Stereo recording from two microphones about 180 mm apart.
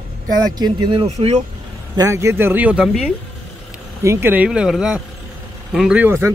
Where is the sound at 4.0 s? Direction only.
15° right (ahead or behind).